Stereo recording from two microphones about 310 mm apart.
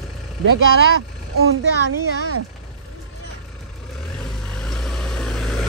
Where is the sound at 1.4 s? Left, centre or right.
Right.